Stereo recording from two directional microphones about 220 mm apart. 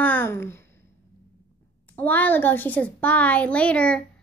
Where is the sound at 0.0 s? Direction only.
10° left (ahead or behind).